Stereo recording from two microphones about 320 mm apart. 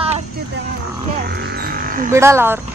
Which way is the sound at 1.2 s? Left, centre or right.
Right.